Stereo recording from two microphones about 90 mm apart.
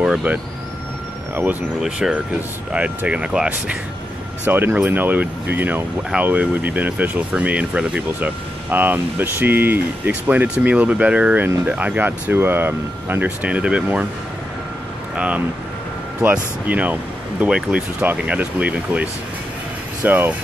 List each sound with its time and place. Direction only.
0.0 s speech: 10° right (ahead or behind)
1.3 s speech: 20° right (ahead or behind)
1.8 s speech: 10° right (ahead or behind)
15.1 s speech: 15° right (ahead or behind)